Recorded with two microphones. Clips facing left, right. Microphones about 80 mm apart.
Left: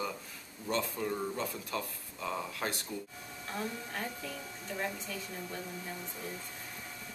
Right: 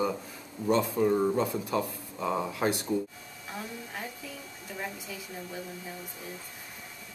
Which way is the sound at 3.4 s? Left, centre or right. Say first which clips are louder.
Left 1 dB; centre.